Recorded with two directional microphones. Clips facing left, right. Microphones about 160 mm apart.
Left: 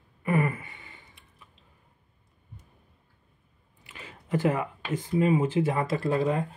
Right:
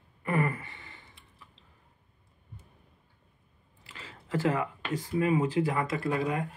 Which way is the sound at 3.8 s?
15° left (ahead or behind).